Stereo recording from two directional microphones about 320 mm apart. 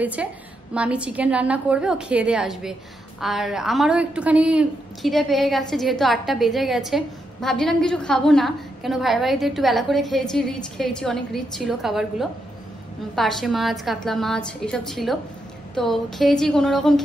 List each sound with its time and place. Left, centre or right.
0.0 s a woman's voice: centre